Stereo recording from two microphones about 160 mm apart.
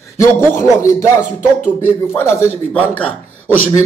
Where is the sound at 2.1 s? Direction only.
15° left (ahead or behind).